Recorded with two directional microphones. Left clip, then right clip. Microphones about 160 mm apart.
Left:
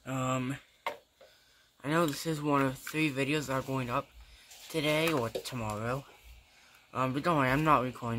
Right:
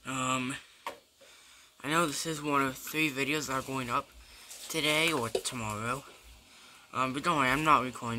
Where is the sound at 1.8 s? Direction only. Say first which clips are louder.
Right 1 dB; 5° right (ahead or behind).